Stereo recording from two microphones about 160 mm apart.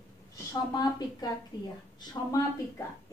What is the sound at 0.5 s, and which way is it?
Speech, 25° left (ahead or behind).